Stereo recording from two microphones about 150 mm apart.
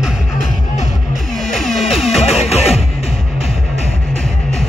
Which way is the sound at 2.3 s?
45° left (ahead or behind).